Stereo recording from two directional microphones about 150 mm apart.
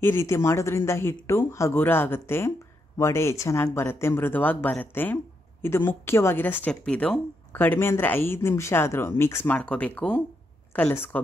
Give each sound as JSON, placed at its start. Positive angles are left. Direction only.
{"t": 0.0, "sound": "speech", "side_deg": 15}